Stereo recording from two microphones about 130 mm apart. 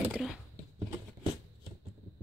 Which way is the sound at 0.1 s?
Centre (ahead or behind).